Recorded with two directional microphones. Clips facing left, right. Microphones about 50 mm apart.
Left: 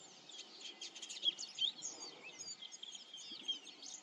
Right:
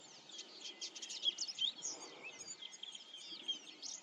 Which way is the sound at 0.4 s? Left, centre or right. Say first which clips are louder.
Right 1 dB; centre.